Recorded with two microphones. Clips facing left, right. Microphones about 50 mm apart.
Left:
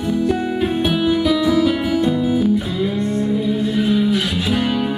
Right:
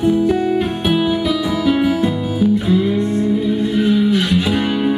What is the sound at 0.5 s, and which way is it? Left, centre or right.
Music, centre.